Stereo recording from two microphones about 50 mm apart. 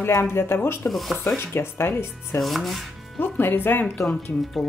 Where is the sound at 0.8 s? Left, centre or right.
Centre.